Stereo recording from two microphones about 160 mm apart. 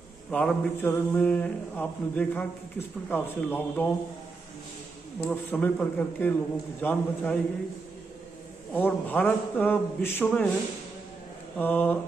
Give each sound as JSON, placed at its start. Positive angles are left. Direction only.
{"t": 0.3, "sound": "mantra", "side_deg": 5}
{"t": 5.2, "sound": "mantra", "side_deg": 10}
{"t": 8.7, "sound": "mantra", "side_deg": 10}
{"t": 11.5, "sound": "mantra", "side_deg": 10}